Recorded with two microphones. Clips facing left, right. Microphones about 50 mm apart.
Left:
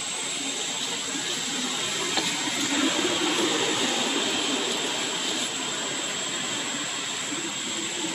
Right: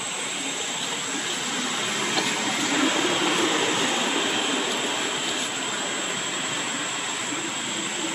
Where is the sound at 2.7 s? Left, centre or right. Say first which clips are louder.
Right 2 dB; right.